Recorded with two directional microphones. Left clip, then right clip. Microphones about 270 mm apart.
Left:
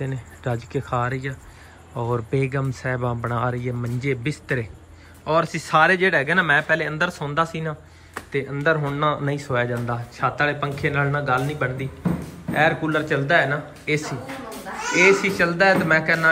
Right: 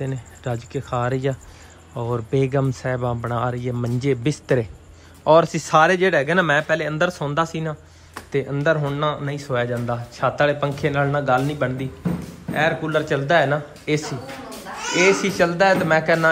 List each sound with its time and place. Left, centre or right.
0.0 s speech: centre